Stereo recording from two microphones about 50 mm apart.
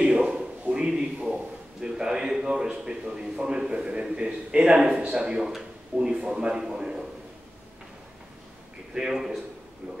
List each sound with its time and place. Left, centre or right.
0.0 s a sound: centre
0.8 s a man's voice: centre
8.9 s a man's voice: centre